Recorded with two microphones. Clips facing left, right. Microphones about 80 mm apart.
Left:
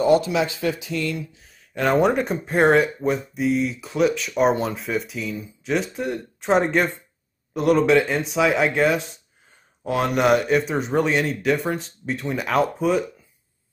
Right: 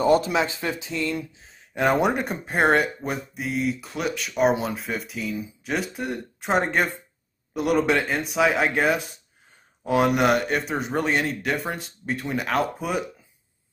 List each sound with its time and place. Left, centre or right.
0.0 s speech: right
1.3 s a sound: right
1.9 s speech: centre